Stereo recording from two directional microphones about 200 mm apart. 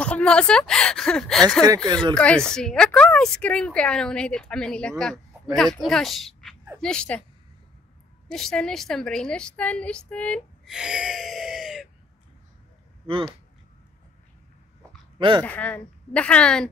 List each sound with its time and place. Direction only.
0.0 s speech: 5° left (ahead or behind)
8.3 s a woman's voice: 5° left (ahead or behind)
15.1 s speech: 25° right (ahead or behind)
15.4 s speech: 10° left (ahead or behind)